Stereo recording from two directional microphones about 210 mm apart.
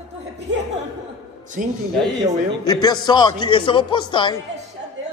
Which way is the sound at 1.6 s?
40° right (ahead or behind).